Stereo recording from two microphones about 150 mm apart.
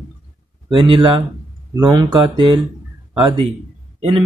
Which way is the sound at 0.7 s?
35° right (ahead or behind).